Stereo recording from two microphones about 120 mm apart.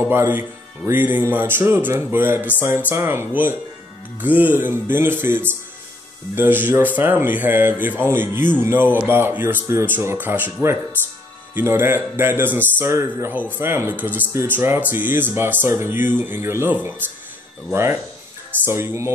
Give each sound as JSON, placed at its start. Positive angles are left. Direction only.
{"t": 0.0, "sound": "speech", "side_deg": -20}
{"t": 18.7, "sound": "speech", "side_deg": -20}